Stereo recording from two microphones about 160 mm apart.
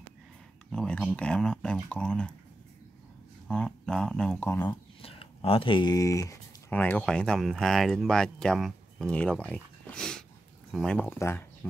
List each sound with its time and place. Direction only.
0.7 s speech: 5° left (ahead or behind)
3.4 s speech: centre (ahead or behind)
4.6 s speech: 35° left (ahead or behind); by 6.3 s 20° left (ahead or behind)
6.7 s speech: 10° left (ahead or behind)